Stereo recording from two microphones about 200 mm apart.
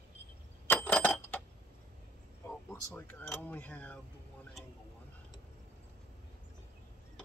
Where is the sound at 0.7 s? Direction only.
10° left (ahead or behind).